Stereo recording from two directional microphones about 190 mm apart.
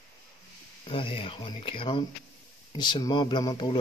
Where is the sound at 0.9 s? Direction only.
30° left (ahead or behind).